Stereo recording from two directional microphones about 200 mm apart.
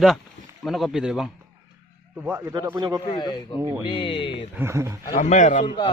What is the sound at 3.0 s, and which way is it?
Speech, 20° left (ahead or behind).